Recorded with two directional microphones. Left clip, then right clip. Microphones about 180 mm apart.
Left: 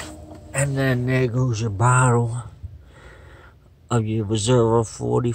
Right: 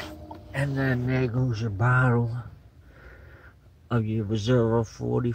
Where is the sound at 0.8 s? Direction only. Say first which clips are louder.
Left 5 dB; 30° left (ahead or behind).